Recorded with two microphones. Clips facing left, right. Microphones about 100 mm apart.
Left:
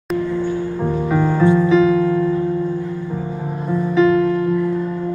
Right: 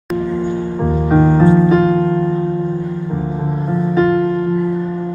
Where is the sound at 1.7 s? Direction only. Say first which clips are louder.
Right 1 dB; 45° right (ahead or behind).